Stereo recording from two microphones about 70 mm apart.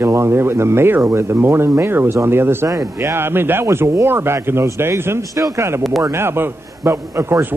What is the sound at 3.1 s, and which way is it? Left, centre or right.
Speech, right.